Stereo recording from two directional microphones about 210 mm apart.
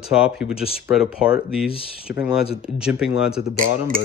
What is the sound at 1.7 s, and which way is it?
Speech, 25° left (ahead or behind).